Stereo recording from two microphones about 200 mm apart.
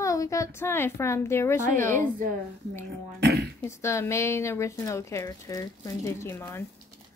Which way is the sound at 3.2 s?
55° right (ahead or behind).